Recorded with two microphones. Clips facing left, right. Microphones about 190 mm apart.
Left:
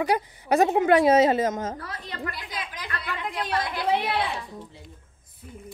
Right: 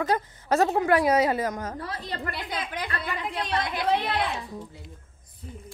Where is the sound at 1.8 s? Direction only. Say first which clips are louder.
Right 3 dB; 35° right (ahead or behind).